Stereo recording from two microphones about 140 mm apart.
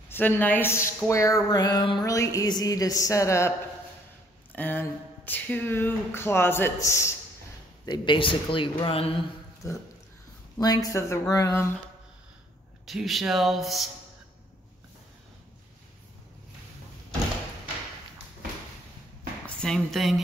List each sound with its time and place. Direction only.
0.1 s speech: 10° left (ahead or behind)
7.8 s speech: 30° left (ahead or behind)
9.6 s speech: 25° left (ahead or behind)
12.8 s speech: centre (ahead or behind)
19.4 s speech: 5° left (ahead or behind)